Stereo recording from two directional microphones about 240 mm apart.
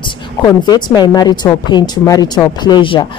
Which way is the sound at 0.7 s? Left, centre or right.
Centre.